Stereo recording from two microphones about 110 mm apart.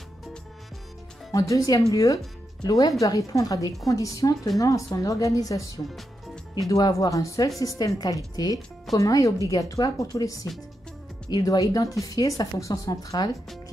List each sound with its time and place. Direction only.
1.3 s speech: 30° left (ahead or behind)
6.7 s speech: 35° left (ahead or behind)